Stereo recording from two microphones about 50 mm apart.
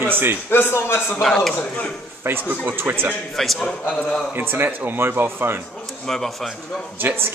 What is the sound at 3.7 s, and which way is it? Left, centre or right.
Speech, left.